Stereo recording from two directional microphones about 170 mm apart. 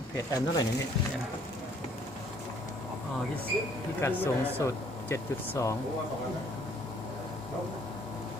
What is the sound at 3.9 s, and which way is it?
A man's voice, 15° left (ahead or behind).